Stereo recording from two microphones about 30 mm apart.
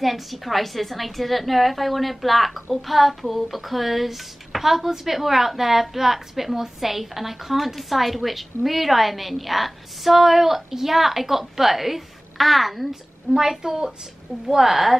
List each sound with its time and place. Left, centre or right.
0.0 s a woman's voice: centre
13.3 s a woman's voice: centre